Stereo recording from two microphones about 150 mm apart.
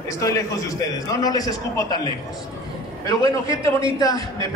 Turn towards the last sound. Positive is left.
turn(degrees=25)  # may be behind; listen again after turning